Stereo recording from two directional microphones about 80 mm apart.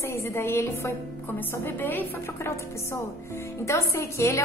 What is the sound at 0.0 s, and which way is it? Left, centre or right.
A woman's voice, left.